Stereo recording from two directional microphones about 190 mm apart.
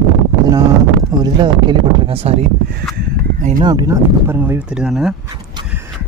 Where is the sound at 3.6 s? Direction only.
20° right (ahead or behind); by 5.1 s 5° right (ahead or behind).